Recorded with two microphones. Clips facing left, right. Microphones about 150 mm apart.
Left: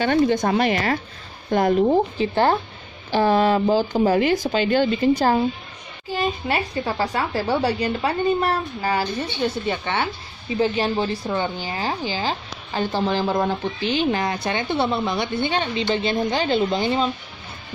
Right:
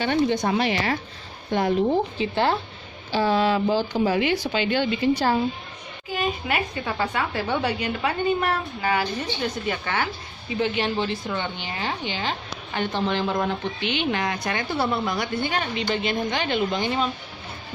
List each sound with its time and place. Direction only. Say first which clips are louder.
0.0 s speech: left 3 dB; 50° left (ahead or behind)
6.1 s a woman's voice: left 2 dB; 35° left (ahead or behind)
9.7 s a woman's voice: left 2 dB; 25° left (ahead or behind)
10.6 s a woman's voice: left 3 dB; 35° left (ahead or behind)